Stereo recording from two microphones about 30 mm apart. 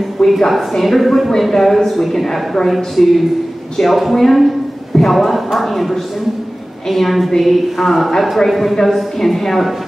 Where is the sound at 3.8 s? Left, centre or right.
Centre.